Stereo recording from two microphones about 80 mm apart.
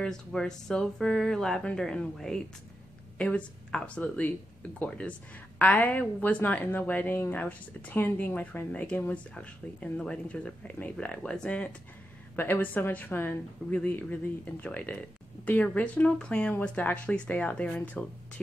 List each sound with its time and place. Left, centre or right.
0.0 s a woman's voice: centre
12.4 s a woman's voice: left